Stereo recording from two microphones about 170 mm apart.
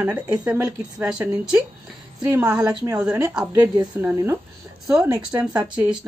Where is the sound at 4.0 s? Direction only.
10° right (ahead or behind).